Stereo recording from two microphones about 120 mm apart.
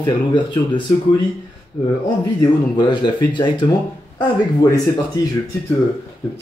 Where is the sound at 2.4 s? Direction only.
40° left (ahead or behind).